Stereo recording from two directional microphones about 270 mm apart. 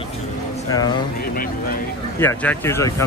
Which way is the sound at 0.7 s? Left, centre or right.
Centre.